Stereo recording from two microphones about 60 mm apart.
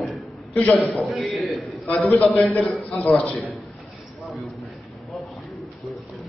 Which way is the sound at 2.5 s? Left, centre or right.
Left.